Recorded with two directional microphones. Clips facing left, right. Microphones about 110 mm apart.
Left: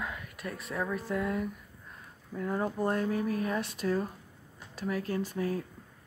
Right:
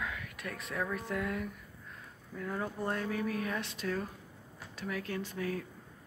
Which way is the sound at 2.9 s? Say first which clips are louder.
Left 4 dB; 35° left (ahead or behind).